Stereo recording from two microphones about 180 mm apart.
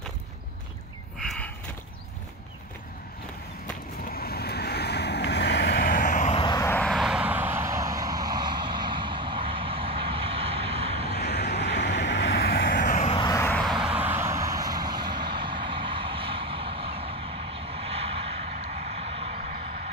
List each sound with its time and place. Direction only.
4.1 s vehicle: 60° left (ahead or behind)
6.3 s vehicle: 25° left (ahead or behind)
6.6 s vehicle: 10° left (ahead or behind); by 11.1 s 35° right (ahead or behind)
11.1 s vehicle: 65° left (ahead or behind)
12.8 s vehicle: 45° left (ahead or behind)
13.1 s vehicle: 25° left (ahead or behind)
13.4 s vehicle: 5° left (ahead or behind); by 18.6 s 35° right (ahead or behind)
18.6 s vehicle: 45° right (ahead or behind)